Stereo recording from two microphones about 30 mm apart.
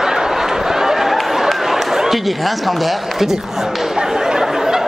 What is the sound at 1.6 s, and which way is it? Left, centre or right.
Speech, centre.